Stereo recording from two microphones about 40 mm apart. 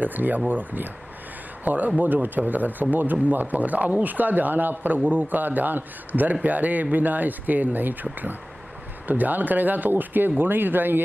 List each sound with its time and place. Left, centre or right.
0.0 s speech: right